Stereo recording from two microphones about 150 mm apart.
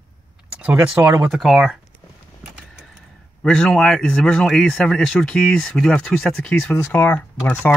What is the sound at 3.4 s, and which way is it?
Speech, 5° left (ahead or behind).